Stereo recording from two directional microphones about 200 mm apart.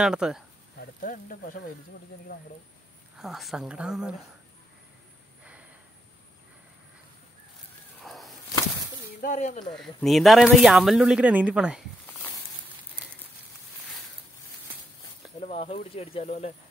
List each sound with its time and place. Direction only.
0.0 s speech: 5° right (ahead or behind)
0.7 s speech: 45° left (ahead or behind)
3.2 s speech: centre (ahead or behind)
5.4 s a sound: 5° right (ahead or behind)
8.0 s a sound: centre (ahead or behind)
9.2 s speech: 40° left (ahead or behind)
9.8 s speech: centre (ahead or behind)
15.4 s speech: 30° left (ahead or behind)